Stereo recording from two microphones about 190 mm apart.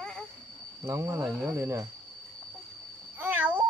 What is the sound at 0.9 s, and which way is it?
A child's voice, 15° right (ahead or behind).